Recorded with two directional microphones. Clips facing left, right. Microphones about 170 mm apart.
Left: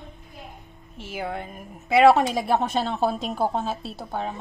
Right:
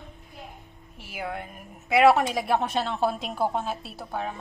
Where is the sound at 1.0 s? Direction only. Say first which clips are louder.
Left 3 dB; 25° left (ahead or behind).